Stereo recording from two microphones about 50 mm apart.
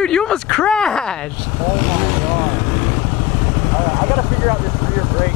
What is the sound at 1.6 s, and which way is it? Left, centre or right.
Vehicle, centre.